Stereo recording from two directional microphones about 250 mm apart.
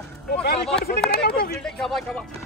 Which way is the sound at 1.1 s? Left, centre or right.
Left.